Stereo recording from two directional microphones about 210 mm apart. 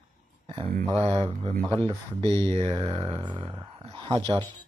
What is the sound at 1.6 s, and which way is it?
Speech, 10° left (ahead or behind).